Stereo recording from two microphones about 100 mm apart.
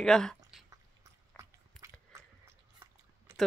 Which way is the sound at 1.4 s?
30° right (ahead or behind).